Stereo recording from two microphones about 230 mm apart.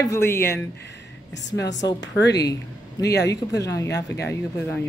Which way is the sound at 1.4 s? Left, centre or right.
Left.